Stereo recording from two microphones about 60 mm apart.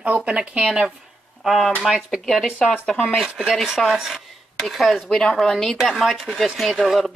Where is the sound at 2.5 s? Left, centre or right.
Centre.